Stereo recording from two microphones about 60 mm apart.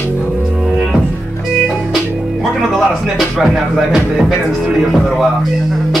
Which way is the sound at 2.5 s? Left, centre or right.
Centre.